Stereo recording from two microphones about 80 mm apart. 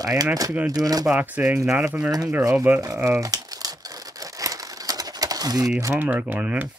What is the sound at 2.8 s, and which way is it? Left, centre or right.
Crumpling, right.